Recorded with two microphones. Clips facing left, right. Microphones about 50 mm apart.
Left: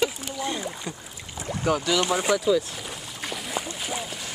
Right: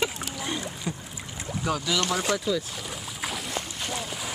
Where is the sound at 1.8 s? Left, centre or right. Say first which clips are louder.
Left 3 dB; centre.